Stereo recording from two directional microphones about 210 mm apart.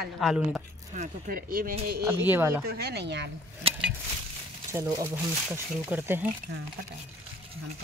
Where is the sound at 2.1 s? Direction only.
10° right (ahead or behind).